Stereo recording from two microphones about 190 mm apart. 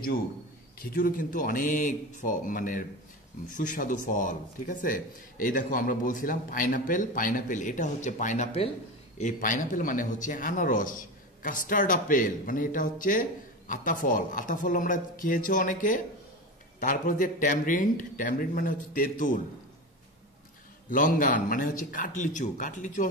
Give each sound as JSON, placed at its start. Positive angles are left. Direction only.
{"t": 0.7, "sound": "speech", "side_deg": 50}
{"t": 20.9, "sound": "speech", "side_deg": 45}